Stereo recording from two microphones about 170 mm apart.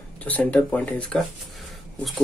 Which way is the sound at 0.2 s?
10° left (ahead or behind).